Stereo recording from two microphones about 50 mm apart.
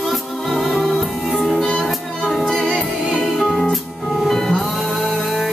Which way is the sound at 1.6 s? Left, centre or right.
Left.